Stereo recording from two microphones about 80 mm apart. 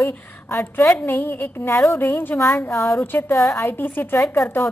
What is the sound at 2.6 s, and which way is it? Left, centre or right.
Speech, left.